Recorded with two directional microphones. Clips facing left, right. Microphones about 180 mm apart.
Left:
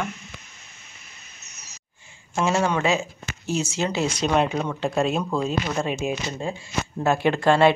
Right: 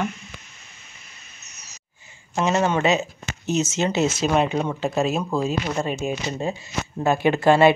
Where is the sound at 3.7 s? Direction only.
Centre (ahead or behind).